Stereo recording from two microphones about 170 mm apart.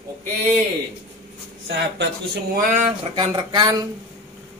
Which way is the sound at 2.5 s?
55° right (ahead or behind).